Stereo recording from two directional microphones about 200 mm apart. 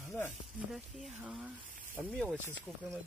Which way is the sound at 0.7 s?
5° right (ahead or behind).